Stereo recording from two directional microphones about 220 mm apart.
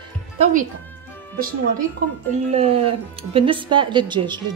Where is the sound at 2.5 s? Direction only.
25° right (ahead or behind).